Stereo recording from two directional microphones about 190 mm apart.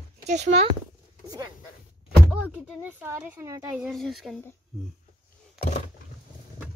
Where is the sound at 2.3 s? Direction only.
5° right (ahead or behind).